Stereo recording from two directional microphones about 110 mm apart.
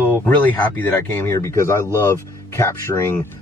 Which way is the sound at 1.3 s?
25° left (ahead or behind).